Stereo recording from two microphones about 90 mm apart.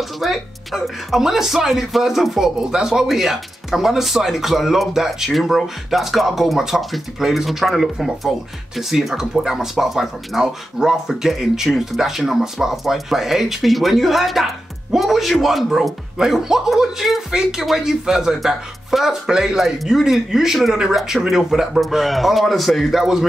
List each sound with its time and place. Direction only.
0.2 s speech: centre (ahead or behind)